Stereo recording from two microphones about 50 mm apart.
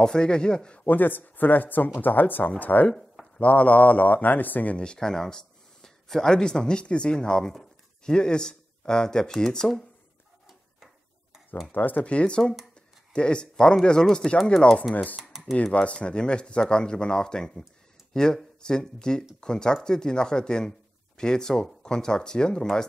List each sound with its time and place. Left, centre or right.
0.0 s speech: centre
0.8 s speech: left
4.7 s speech: centre
11.7 s speech: left; by 14.4 s centre
15.5 s speech: left